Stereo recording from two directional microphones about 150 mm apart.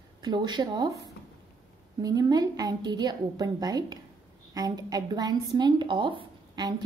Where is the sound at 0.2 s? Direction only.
30° right (ahead or behind).